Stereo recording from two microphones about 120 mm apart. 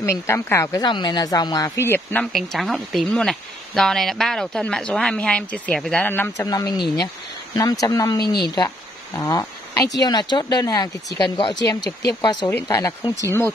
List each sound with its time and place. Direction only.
0.0 s speech: 20° left (ahead or behind)
0.8 s speech: 40° left (ahead or behind)
1.8 s speech: 20° left (ahead or behind)
2.3 s speech: centre (ahead or behind)
6.0 s speech: 15° left (ahead or behind)
6.4 s speech: 30° left (ahead or behind)